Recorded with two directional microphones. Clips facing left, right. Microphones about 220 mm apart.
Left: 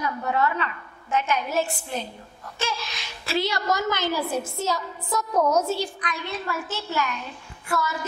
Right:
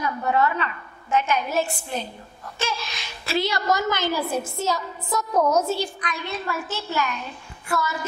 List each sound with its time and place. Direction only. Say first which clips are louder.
0.0 s a woman's voice: right 2 dB; 20° right (ahead or behind)
5.3 s a woman's voice: right 1 dB; 30° right (ahead or behind)
5.7 s a woman's voice: right 1 dB; 10° right (ahead or behind)